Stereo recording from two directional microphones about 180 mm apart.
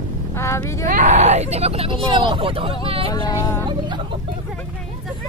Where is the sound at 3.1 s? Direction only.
20° left (ahead or behind).